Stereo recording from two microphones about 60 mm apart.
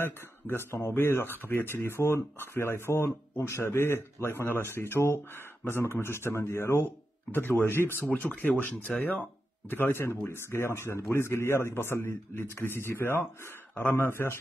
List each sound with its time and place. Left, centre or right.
0.0 s speech: left